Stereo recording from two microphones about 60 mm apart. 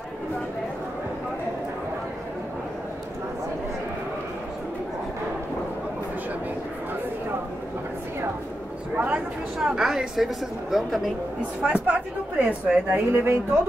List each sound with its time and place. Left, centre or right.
8.9 s a sound: right
9.6 s a woman's voice: centre
11.6 s speech: centre
12.9 s speech: right